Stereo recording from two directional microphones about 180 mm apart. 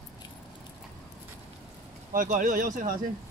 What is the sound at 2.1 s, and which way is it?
Speech, 50° right (ahead or behind).